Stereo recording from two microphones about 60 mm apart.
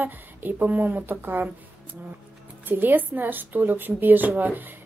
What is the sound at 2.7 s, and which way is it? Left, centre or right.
A woman's voice, right.